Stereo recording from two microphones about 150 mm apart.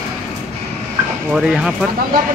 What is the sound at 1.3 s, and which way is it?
Speech, 5° right (ahead or behind).